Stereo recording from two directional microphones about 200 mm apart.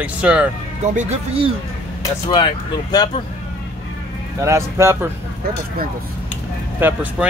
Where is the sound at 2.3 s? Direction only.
20° left (ahead or behind).